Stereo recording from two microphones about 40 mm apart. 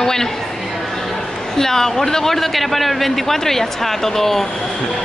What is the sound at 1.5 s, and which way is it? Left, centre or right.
A man's voice, centre.